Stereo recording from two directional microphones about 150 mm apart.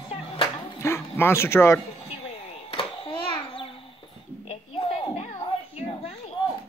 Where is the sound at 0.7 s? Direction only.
15° left (ahead or behind).